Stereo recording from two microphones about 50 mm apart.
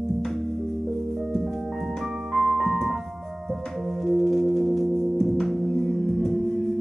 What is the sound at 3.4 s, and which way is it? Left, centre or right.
Singing bowl, centre.